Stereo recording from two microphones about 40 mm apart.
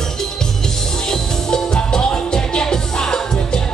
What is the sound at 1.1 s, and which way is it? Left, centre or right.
Music, centre.